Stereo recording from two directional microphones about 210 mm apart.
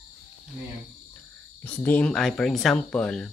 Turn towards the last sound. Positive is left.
turn(degrees=5)  # may be behind; listen again after turning